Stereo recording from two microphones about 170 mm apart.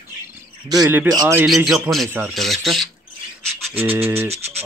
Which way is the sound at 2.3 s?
Centre (ahead or behind).